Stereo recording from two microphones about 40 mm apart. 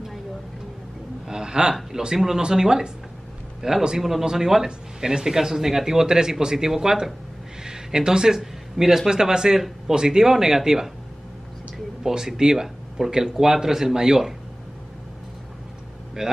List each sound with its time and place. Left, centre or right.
1.2 s a sound: centre
1.9 s speech: centre
12.0 s speech: centre
16.2 s speech: centre